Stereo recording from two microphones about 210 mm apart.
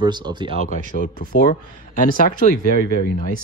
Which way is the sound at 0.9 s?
40° left (ahead or behind).